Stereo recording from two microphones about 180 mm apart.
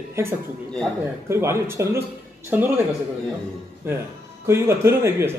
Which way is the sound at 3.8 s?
15° right (ahead or behind).